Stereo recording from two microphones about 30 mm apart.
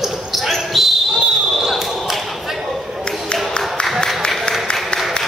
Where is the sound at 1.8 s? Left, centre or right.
Centre.